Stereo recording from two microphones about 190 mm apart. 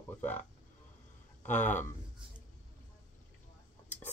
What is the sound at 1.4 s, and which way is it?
Speech, 40° left (ahead or behind).